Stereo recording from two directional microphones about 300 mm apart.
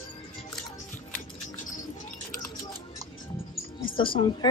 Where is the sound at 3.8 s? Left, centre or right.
Centre.